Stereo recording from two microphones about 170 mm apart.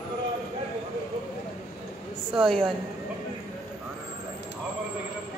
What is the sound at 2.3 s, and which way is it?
Speech, centre (ahead or behind).